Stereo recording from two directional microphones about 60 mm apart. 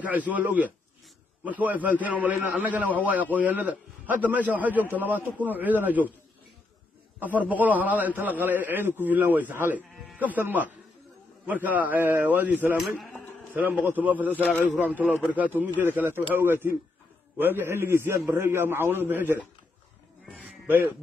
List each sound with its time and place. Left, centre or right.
0.1 s a man's voice: right
7.2 s a man's voice: right
12.7 s a man's voice: centre
13.5 s a man's voice: right